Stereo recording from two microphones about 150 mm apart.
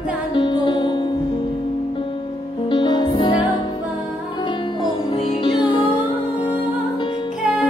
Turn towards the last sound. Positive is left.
turn(degrees=-10)  # may be behind; listen again after turning